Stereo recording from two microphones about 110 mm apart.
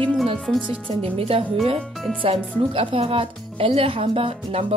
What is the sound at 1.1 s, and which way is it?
Speech, 60° right (ahead or behind).